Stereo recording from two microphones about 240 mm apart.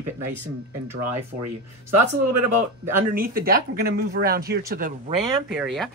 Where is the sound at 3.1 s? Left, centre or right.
Right.